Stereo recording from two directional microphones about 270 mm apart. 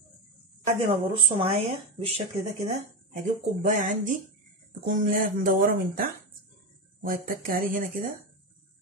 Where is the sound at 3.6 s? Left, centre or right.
Right.